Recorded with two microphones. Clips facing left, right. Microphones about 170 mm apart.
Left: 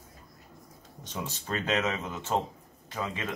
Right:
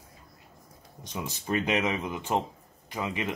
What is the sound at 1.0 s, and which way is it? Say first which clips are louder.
Speech: right 3 dB; 15° right (ahead or behind).